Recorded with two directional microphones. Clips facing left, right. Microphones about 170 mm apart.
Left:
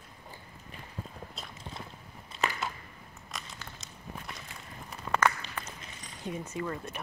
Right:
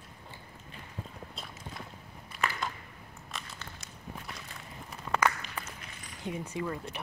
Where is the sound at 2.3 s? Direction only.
25° left (ahead or behind).